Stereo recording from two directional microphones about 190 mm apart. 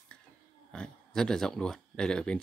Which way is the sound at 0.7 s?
5° left (ahead or behind).